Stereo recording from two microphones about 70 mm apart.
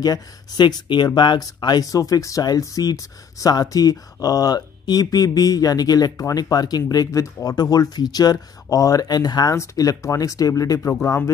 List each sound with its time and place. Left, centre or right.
0.0 s speech: left
1.9 s speech: left
9.6 s speech: left
10.8 s speech: left